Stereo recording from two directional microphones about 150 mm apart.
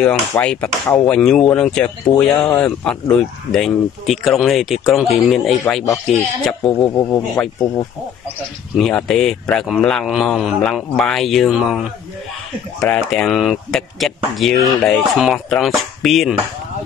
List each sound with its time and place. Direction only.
0.5 s speech: 5° left (ahead or behind)
6.9 s speech: 20° left (ahead or behind)
8.7 s speech: 5° left (ahead or behind)